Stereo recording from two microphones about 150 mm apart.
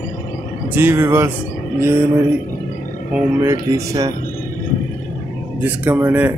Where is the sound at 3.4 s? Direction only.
20° right (ahead or behind).